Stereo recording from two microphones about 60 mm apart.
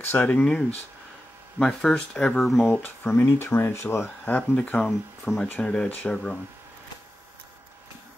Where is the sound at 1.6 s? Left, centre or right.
Centre.